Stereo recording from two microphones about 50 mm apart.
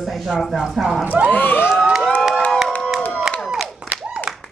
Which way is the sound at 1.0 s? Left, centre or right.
Right.